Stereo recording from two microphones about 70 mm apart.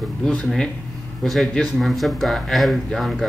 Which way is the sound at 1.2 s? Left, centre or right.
Centre.